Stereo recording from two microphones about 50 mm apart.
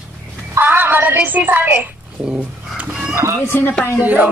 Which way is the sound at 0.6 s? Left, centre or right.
Right.